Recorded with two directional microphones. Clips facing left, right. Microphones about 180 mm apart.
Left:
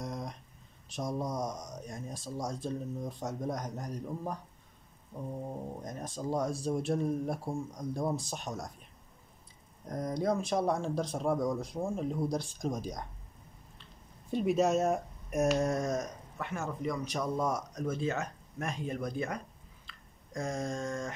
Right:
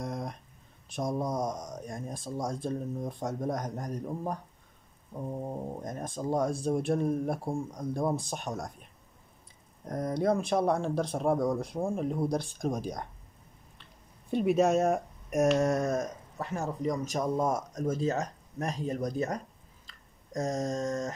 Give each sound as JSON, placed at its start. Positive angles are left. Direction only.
{"t": 0.0, "sound": "a sound", "side_deg": -55}
{"t": 0.8, "sound": "speech", "side_deg": -55}
{"t": 9.8, "sound": "speech", "side_deg": -60}
{"t": 14.3, "sound": "speech", "side_deg": -60}
{"t": 16.3, "sound": "speech", "side_deg": -35}
{"t": 19.9, "sound": "a sound", "side_deg": -40}